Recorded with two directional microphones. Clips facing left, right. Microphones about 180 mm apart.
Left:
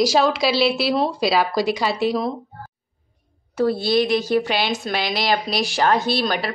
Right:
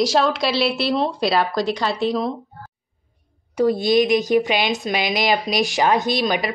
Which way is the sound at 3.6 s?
15° right (ahead or behind).